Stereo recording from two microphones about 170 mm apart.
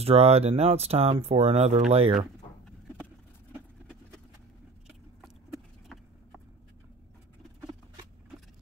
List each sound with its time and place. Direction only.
0.0 s speech: 35° right (ahead or behind)